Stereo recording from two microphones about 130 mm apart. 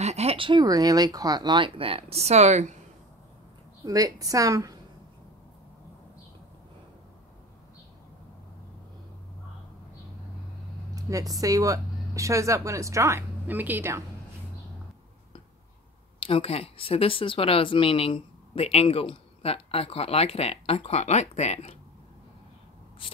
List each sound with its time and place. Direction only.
0.0 s speech: 55° right (ahead or behind)
3.8 s a woman's voice: 30° right (ahead or behind)
11.0 s speech: 25° right (ahead or behind)
16.2 s speech: 45° left (ahead or behind)